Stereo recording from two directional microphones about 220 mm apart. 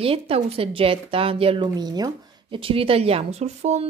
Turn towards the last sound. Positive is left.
turn(degrees=-30)  # may be behind; listen again after turning